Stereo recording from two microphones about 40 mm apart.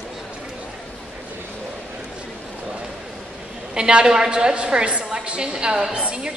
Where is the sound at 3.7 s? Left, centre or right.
Right.